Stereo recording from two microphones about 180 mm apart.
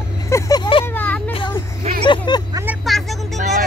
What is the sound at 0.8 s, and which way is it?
Vehicle, 10° left (ahead or behind).